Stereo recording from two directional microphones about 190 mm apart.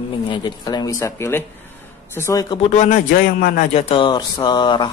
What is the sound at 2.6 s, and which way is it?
A man's voice, 40° left (ahead or behind).